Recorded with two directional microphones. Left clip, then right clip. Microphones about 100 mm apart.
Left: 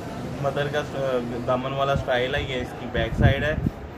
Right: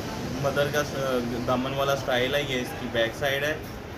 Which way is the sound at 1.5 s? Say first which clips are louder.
Left 2 dB; 35° left (ahead or behind).